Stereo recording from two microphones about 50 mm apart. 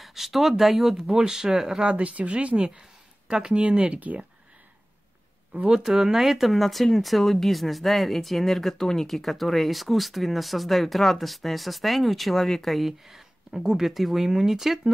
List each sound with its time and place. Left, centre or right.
0.0 s speech: centre
1.9 s speech: right
4.0 s speech: right
5.7 s speech: centre